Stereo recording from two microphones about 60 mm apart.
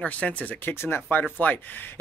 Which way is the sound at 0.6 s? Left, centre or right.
Left.